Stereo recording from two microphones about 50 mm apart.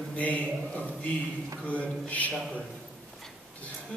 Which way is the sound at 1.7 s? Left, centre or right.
Left.